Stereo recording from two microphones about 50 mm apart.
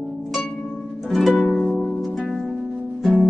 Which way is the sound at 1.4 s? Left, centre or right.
Centre.